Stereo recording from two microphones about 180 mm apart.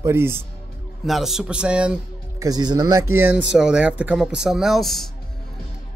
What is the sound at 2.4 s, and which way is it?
Speech, 20° right (ahead or behind).